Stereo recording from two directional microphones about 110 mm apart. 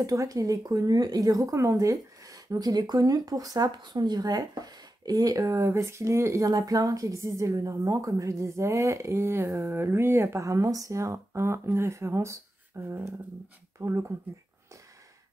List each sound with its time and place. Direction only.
0.0 s speech: 30° right (ahead or behind)